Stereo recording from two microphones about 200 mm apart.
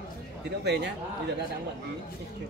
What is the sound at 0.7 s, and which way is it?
Speech, 55° right (ahead or behind).